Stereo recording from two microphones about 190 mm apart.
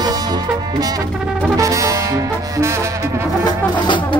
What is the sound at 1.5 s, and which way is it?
Brass instrument, 15° right (ahead or behind).